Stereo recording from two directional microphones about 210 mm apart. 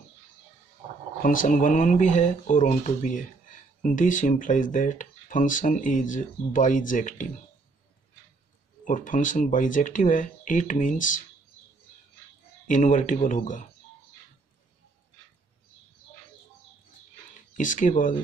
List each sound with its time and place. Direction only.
1.2 s speech: 40° left (ahead or behind)
8.8 s speech: 40° left (ahead or behind)
12.6 s speech: 35° left (ahead or behind)
17.6 s speech: 35° left (ahead or behind)